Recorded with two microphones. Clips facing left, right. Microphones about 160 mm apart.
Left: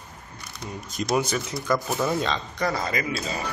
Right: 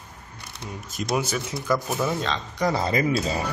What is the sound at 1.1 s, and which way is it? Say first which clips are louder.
Speech: left 1 dB; 5° right (ahead or behind).